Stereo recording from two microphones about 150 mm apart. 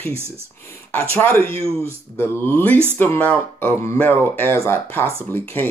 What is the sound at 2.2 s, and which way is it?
Speech, 15° left (ahead or behind).